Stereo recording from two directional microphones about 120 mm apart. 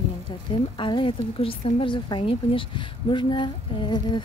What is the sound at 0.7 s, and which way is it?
Speech, 40° left (ahead or behind).